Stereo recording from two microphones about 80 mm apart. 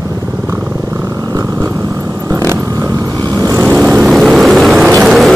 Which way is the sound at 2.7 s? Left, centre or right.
Right.